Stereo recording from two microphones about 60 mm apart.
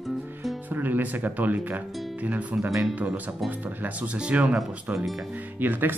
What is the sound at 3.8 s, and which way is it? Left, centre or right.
Speech, right.